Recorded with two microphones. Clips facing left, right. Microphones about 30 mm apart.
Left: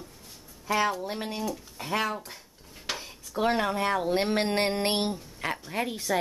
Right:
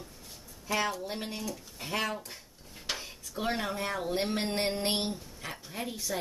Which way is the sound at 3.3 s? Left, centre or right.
Centre.